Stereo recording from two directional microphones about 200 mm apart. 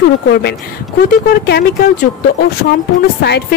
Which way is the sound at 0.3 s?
55° left (ahead or behind).